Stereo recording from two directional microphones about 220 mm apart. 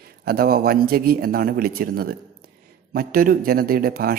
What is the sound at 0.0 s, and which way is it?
A man's voice, 45° right (ahead or behind).